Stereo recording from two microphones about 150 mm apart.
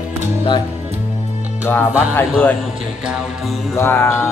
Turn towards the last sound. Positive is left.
turn(degrees=15)  # may be behind; listen again after turning